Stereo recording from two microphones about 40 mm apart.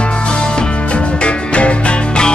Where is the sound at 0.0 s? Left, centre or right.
Left.